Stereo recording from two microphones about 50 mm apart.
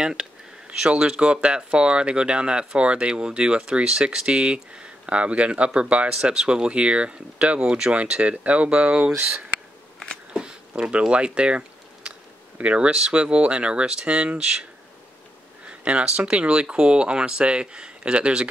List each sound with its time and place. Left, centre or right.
0.0 s speech: centre
10.3 s a sound: centre
12.5 s speech: right